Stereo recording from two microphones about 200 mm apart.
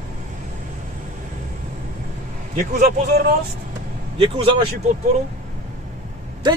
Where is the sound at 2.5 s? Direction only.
40° right (ahead or behind).